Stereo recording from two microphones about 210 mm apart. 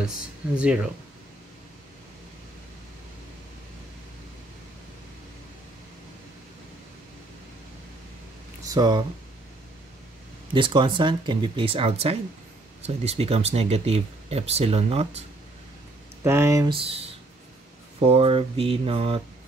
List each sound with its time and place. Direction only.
0.6 s speech: 5° right (ahead or behind)
8.6 s speech: 20° right (ahead or behind)
10.5 s speech: 25° right (ahead or behind)
16.3 s speech: 15° right (ahead or behind)